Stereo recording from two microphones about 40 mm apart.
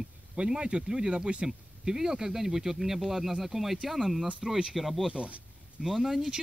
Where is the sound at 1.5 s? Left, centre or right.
Centre.